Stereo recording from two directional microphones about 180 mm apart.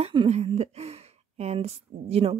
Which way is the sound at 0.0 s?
30° right (ahead or behind).